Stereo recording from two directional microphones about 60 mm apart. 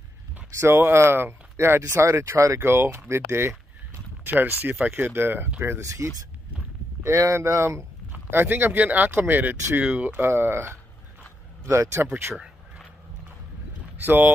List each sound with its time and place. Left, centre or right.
0.6 s speech: right
1.8 s speech: right
2.6 s speech: right
4.2 s speech: right
5.8 s speech: right
8.3 s speech: right
8.7 s speech: right
10.2 s speech: right
12.0 s speech: right
14.0 s speech: right